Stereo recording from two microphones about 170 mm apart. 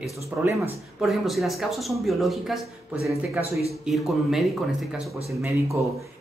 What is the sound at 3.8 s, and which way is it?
Speech, centre (ahead or behind).